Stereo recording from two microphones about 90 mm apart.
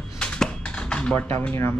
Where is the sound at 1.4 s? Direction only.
25° left (ahead or behind).